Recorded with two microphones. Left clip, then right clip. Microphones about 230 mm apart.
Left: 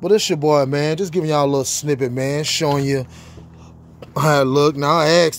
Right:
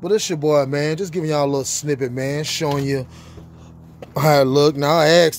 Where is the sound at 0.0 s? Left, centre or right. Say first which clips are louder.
Left 3 dB; left.